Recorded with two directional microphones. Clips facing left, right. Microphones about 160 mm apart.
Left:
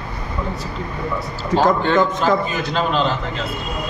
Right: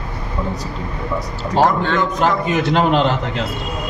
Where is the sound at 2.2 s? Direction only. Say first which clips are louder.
Right 2 dB; 65° right (ahead or behind).